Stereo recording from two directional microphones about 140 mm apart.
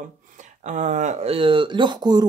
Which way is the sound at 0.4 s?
60° right (ahead or behind).